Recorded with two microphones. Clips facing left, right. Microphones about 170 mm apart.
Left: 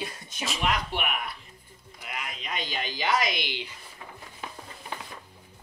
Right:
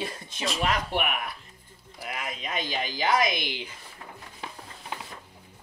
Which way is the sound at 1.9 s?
40° right (ahead or behind).